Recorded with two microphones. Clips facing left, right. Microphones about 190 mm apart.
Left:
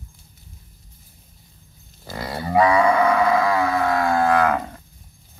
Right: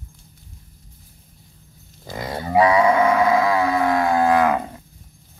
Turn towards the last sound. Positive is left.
turn(degrees=-15)  # may be behind; listen again after turning